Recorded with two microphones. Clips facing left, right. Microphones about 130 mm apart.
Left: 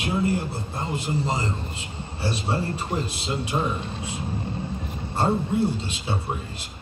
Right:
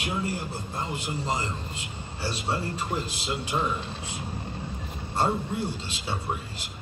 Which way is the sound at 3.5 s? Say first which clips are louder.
Left 2 dB; 25° left (ahead or behind).